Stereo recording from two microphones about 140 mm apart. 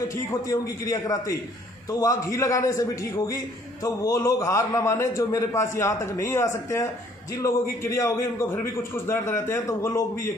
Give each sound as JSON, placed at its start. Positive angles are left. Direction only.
{"t": 0.1, "sound": "a man's voice", "side_deg": 25}
{"t": 7.8, "sound": "a man's voice", "side_deg": 20}